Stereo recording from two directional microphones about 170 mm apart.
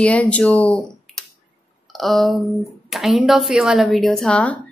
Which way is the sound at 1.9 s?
Centre (ahead or behind).